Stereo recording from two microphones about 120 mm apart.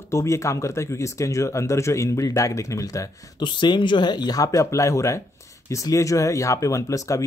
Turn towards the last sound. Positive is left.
turn(degrees=25)  # may be behind; listen again after turning